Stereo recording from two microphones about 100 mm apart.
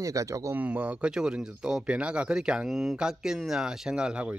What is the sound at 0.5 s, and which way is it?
Speech, 15° right (ahead or behind).